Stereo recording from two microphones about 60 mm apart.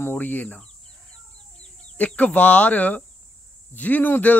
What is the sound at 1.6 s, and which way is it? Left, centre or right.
Speech, left.